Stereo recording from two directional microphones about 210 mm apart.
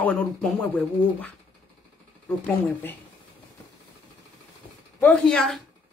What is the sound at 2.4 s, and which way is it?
Speech, 10° left (ahead or behind).